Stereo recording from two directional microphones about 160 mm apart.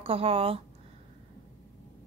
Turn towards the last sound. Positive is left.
turn(degrees=-35)  # may be behind; listen again after turning